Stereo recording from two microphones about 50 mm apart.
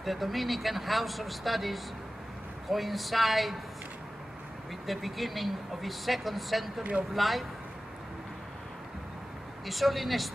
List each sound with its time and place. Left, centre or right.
0.0 s speech: centre
4.8 s speech: centre
6.8 s speech: right
7.2 s speech: centre
9.7 s speech: centre